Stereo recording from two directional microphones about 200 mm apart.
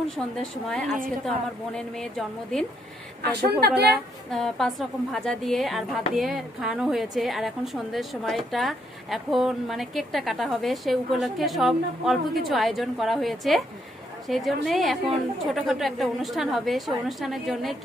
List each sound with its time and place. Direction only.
0.1 s a woman's voice: 5° left (ahead or behind)
3.2 s a woman's voice: 55° right (ahead or behind)
3.9 s a woman's voice: centre (ahead or behind)